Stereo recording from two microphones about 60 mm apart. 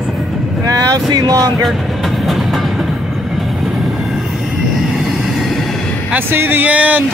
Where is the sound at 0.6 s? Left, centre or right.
Right.